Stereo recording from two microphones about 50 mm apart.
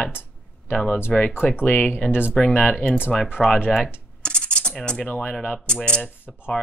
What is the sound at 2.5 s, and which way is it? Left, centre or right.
Speech, left.